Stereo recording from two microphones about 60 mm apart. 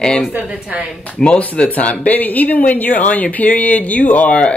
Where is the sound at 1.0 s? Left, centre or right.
Left.